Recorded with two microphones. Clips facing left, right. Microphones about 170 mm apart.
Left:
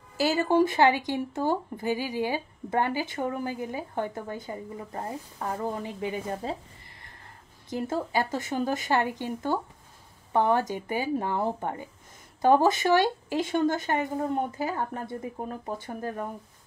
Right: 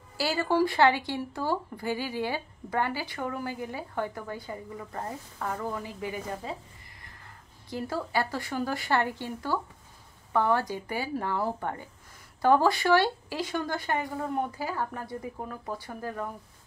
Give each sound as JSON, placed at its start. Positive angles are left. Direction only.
{"t": 0.2, "sound": "speech", "side_deg": 20}
{"t": 7.7, "sound": "speech", "side_deg": 20}